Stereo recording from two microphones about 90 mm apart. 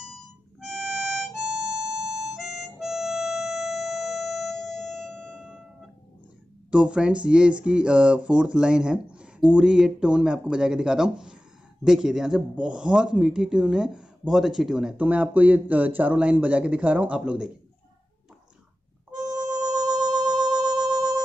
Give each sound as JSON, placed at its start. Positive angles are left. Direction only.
{"t": 0.0, "sound": "harmonica", "side_deg": -5}
{"t": 6.7, "sound": "speech", "side_deg": -10}
{"t": 19.5, "sound": "music", "side_deg": -45}